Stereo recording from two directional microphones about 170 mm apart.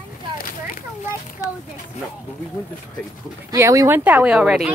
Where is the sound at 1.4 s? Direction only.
20° left (ahead or behind).